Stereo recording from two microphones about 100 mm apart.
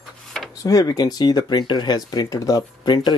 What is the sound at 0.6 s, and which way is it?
Speech, 35° left (ahead or behind).